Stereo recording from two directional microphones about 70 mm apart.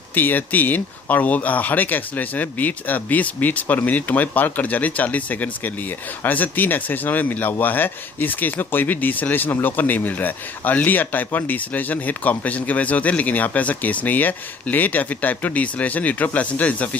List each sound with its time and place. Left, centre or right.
0.1 s speech: left